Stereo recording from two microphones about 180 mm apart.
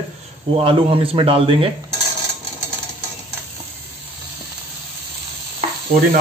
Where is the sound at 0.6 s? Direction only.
30° right (ahead or behind).